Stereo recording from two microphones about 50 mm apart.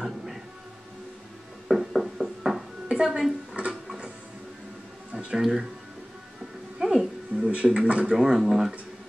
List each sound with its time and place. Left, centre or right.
0.0 s a sound: centre
1.7 s music: centre
3.0 s speech: centre
3.6 s tick-tock: right
5.1 s speech: centre
6.8 s music: centre
7.3 s speech: centre
8.1 s speech: centre